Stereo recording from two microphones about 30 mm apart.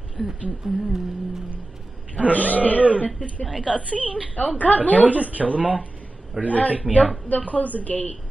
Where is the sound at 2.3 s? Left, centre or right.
Left.